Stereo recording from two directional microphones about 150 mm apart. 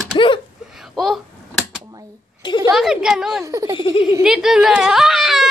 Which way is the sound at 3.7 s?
30° left (ahead or behind).